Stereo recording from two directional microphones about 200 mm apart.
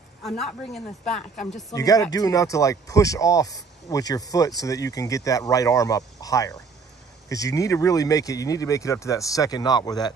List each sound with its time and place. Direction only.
0.2 s speech: centre (ahead or behind)
1.3 s speech: 40° left (ahead or behind)
1.7 s speech: 15° left (ahead or behind)